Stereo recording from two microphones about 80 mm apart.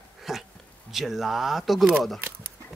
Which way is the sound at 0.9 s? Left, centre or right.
Centre.